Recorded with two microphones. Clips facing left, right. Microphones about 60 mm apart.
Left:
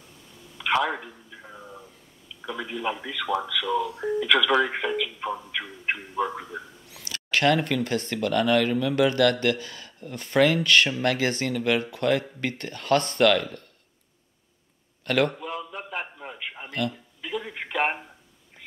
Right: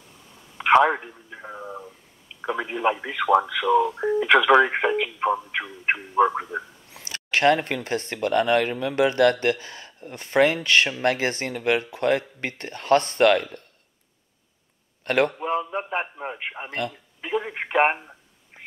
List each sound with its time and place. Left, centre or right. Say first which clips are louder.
0.6 s a man's voice: right 7 dB; right
15.0 s speech: right 2 dB; right